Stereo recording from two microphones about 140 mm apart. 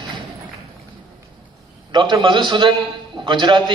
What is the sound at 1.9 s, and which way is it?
A man's voice, 35° right (ahead or behind).